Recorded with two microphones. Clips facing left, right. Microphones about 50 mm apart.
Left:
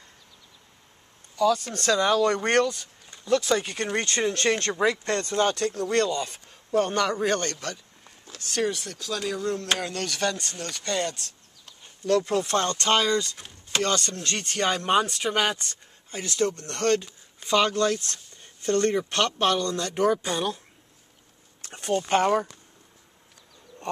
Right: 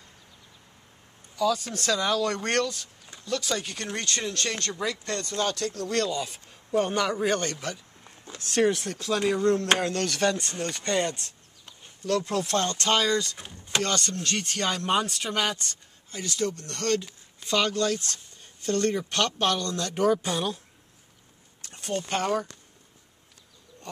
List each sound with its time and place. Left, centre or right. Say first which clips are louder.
1.3 s speech: left 3 dB; centre; by 5.7 s left
5.7 s speech: left 4 dB; centre
6.0 s a man's voice: left 2 dB; centre; by 9.5 s right
9.5 s speech: right 4 dB; right
9.8 s speech: right 3 dB; centre
10.2 s speech: right 2 dB; right
12.0 s speech: left 3 dB; centre
13.4 s speech: right 2 dB; centre
13.7 s speech: left 2 dB; centre
14.6 s speech: left 4 dB; centre
21.6 s speech: left 6 dB; left
21.9 s speech: left 5 dB; centre